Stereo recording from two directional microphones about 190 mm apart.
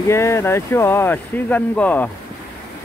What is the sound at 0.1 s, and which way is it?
Speech, 15° left (ahead or behind).